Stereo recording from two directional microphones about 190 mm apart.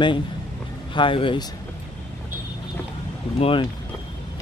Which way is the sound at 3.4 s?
30° left (ahead or behind).